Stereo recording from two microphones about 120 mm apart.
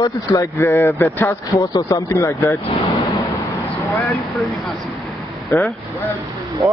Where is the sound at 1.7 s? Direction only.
30° left (ahead or behind).